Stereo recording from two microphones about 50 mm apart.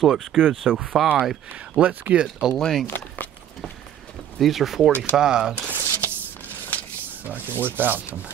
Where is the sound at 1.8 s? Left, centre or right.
Right.